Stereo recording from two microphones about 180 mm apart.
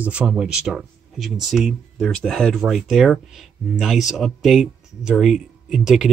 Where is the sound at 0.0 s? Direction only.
5° right (ahead or behind).